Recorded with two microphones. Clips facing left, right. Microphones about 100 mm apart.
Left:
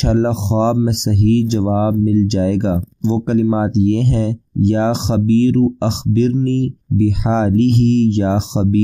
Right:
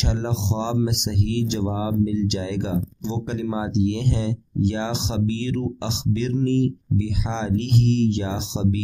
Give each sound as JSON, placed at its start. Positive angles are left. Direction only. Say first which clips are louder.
{"t": 0.0, "sound": "speech", "louder": "left 10 dB", "side_deg": 40}